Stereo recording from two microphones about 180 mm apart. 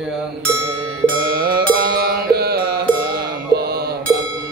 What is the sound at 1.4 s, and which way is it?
Mantra, 60° right (ahead or behind).